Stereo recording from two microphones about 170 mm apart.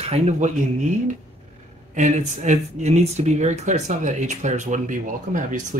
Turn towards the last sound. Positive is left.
turn(degrees=-50)  # may be behind; listen again after turning